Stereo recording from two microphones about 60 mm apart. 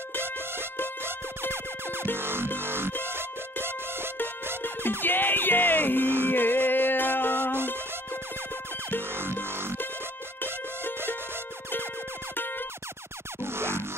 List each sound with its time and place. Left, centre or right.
1.5 s music: right
5.0 s music: left
9.1 s music: right
13.4 s music: right